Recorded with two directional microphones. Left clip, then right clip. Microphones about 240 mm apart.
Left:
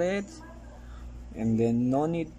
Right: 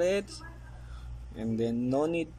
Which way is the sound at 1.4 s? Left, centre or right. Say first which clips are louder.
Left 4 dB; centre.